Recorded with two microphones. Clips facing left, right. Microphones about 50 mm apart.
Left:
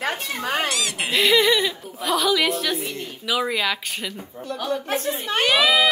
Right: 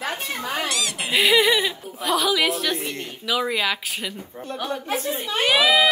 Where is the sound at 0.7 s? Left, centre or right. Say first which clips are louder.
Even; centre.